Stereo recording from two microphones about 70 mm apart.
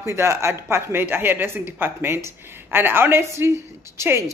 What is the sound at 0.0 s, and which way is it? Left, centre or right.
A woman's voice, right.